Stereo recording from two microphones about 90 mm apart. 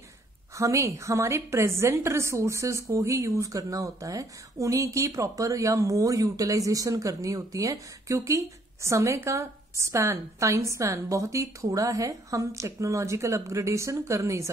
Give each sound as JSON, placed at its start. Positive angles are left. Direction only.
{"t": 0.6, "sound": "a woman's voice", "side_deg": -35}